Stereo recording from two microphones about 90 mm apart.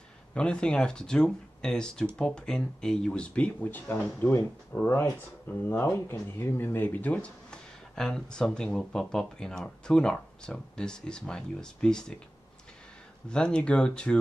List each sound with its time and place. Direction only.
0.3 s speech: 10° left (ahead or behind)
13.3 s speech: 10° left (ahead or behind)